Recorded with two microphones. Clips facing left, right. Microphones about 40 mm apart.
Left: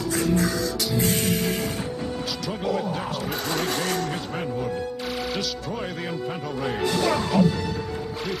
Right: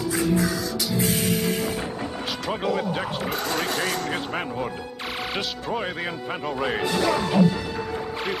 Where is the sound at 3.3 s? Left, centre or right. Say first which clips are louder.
Even; centre.